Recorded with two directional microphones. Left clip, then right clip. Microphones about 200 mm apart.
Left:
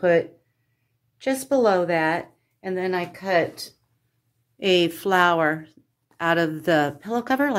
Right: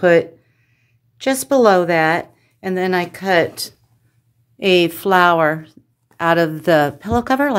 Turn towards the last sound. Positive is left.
turn(degrees=-20)  # may be behind; listen again after turning